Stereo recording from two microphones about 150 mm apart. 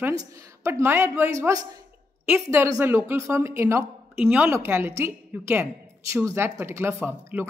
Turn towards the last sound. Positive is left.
turn(degrees=-15)  # may be behind; listen again after turning